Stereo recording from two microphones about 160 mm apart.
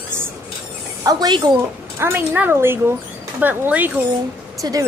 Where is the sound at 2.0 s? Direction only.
15° right (ahead or behind).